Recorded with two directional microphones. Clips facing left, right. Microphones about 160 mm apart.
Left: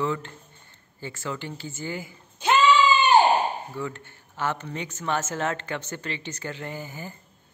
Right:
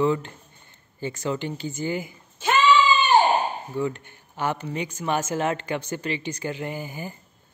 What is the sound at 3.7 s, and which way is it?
Speech, 15° right (ahead or behind).